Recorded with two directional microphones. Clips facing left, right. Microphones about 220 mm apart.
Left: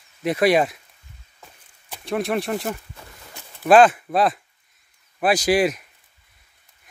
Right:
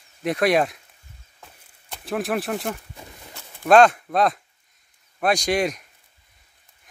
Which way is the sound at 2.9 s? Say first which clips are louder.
Right 2 dB; 15° right (ahead or behind).